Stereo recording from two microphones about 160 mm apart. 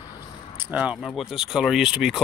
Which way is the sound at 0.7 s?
5° right (ahead or behind).